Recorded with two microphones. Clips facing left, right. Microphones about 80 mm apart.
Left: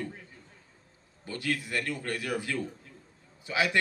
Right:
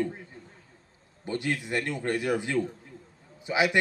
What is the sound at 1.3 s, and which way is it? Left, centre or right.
A man's voice, right.